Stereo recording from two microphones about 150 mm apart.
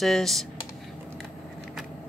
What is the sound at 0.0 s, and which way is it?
Speech, centre (ahead or behind).